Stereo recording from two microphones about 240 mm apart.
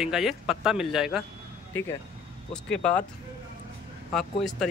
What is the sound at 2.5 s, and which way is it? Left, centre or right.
Speech, centre.